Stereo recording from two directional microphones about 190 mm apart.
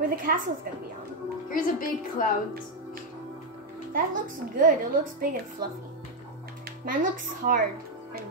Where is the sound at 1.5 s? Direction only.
45° left (ahead or behind).